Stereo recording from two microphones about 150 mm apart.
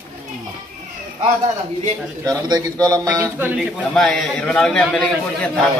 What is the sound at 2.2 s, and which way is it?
Speech, 25° right (ahead or behind).